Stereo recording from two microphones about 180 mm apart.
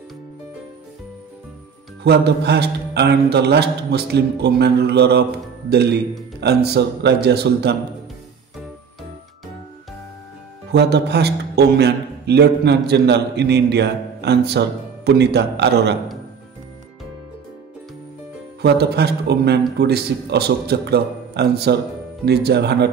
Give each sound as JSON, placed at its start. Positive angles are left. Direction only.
{"t": 2.0, "sound": "a man's voice", "side_deg": -65}
{"t": 10.7, "sound": "a man's voice", "side_deg": -65}
{"t": 18.6, "sound": "a man's voice", "side_deg": -65}